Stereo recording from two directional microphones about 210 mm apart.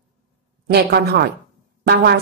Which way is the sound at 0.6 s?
50° right (ahead or behind).